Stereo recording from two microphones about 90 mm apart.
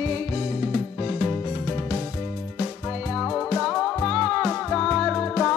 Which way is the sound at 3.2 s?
10° left (ahead or behind).